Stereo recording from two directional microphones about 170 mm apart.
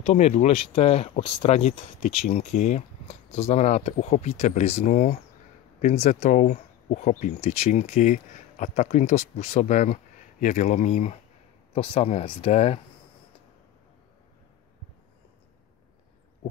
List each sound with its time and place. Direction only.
0.0 s speech: 40° left (ahead or behind)